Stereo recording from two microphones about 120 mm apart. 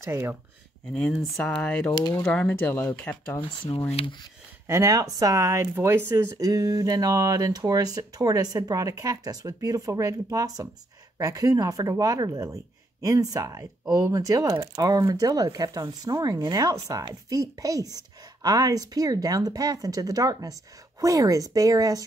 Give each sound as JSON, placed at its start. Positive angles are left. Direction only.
{"t": 0.0, "sound": "speech", "side_deg": -25}
{"t": 0.9, "sound": "speech", "side_deg": 10}
{"t": 1.9, "sound": "speech", "side_deg": 35}
{"t": 2.3, "sound": "speech", "side_deg": 10}
{"t": 3.3, "sound": "speech", "side_deg": 45}
{"t": 4.6, "sound": "speech", "side_deg": -25}